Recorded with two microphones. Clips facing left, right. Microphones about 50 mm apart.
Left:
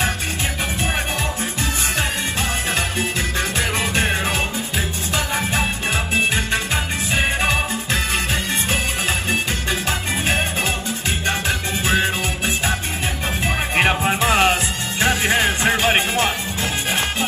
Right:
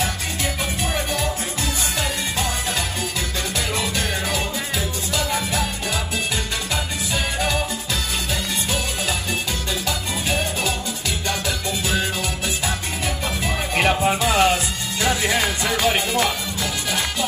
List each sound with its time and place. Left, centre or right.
3.5 s music: left
9.3 s music: left
13.7 s music: left